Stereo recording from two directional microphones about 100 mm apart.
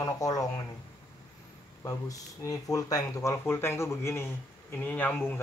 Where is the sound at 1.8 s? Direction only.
35° left (ahead or behind).